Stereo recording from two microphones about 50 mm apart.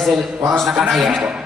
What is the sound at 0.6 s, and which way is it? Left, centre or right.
Speech, centre.